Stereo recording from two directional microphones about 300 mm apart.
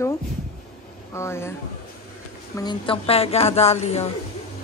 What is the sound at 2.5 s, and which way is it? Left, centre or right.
A woman's voice, centre.